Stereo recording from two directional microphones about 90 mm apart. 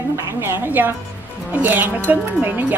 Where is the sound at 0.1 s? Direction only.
25° right (ahead or behind).